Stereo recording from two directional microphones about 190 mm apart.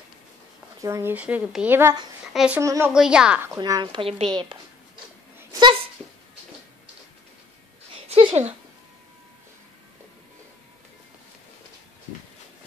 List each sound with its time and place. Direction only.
0.7 s a woman's voice: 15° right (ahead or behind)
2.6 s speech: 15° right (ahead or behind)
2.9 s a woman's voice: 5° right (ahead or behind)
3.5 s a woman's voice: 20° right (ahead or behind)
5.5 s a sound: 25° right (ahead or behind)
8.1 s a sound: 30° right (ahead or behind)